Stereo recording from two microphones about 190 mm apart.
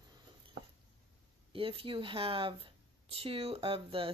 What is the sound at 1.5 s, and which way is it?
Speech, 30° right (ahead or behind).